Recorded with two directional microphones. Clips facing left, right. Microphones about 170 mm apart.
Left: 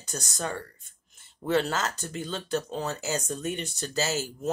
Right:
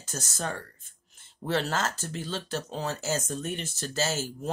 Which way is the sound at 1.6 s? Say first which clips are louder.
Even; 5° right (ahead or behind).